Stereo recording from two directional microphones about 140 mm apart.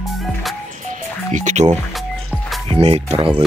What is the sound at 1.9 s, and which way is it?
Music, centre (ahead or behind).